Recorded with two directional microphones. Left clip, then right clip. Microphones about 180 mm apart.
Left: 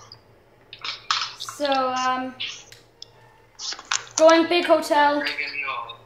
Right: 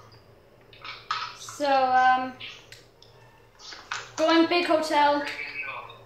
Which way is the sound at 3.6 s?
60° left (ahead or behind).